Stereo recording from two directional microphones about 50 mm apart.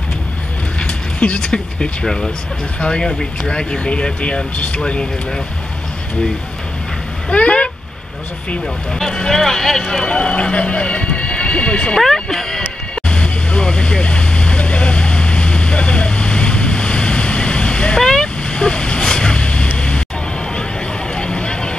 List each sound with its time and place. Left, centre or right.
0.7 s a sound: left
1.5 s speech: centre
7.2 s speech: left
8.9 s speech: centre
10.0 s speech: centre
12.0 s a sound: centre
13.1 s vehicle: left
21.1 s vehicle: left